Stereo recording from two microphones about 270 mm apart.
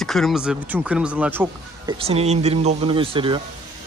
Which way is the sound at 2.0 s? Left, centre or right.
Right.